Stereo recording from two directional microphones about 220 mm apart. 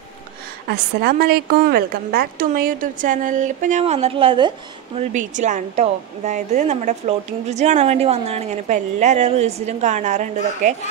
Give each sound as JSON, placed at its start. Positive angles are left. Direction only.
{"t": 0.7, "sound": "a woman's voice", "side_deg": -45}
{"t": 4.9, "sound": "a woman's voice", "side_deg": -35}